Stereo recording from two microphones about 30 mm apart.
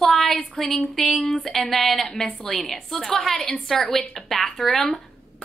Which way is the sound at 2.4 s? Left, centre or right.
Centre.